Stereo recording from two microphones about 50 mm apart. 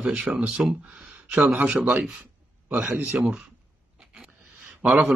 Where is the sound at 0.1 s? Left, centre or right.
Right.